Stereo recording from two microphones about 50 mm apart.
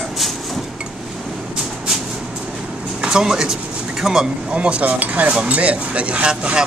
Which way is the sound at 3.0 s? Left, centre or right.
Centre.